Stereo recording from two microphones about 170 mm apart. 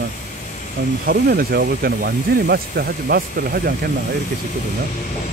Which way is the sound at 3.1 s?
60° right (ahead or behind).